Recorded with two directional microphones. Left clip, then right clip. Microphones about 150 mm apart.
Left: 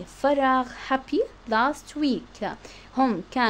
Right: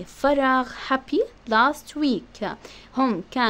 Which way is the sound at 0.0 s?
20° right (ahead or behind).